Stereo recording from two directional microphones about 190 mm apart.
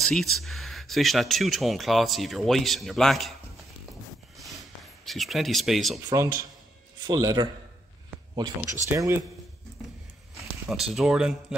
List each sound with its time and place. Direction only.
0.0 s speech: centre (ahead or behind)
4.5 s a sound: centre (ahead or behind)
6.0 s a man's voice: 20° right (ahead or behind)
8.8 s speech: 15° right (ahead or behind)
10.3 s speech: centre (ahead or behind)